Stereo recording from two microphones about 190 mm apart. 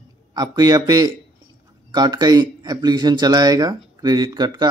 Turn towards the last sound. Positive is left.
turn(degrees=-20)  # may be behind; listen again after turning